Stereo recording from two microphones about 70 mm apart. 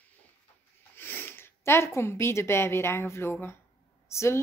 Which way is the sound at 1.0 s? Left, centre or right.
Left.